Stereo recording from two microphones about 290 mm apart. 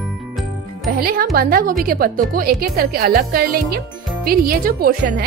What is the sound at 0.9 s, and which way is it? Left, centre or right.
A woman's voice, right.